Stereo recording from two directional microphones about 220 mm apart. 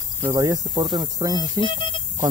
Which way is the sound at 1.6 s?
20° left (ahead or behind).